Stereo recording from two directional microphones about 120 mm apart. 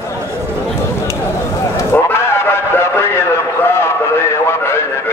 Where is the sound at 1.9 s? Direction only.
20° left (ahead or behind).